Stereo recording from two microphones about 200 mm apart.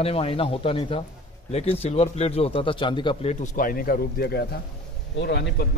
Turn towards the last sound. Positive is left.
turn(degrees=55)  # may be behind; listen again after turning